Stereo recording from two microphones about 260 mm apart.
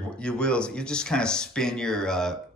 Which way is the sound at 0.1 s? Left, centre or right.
Centre.